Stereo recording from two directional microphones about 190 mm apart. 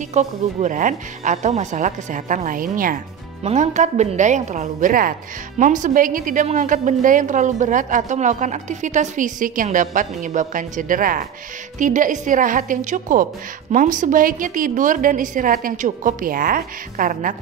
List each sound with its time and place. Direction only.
0.1 s a woman's voice: 40° right (ahead or behind)